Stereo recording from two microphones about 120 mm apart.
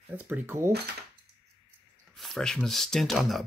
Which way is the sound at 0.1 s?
15° right (ahead or behind).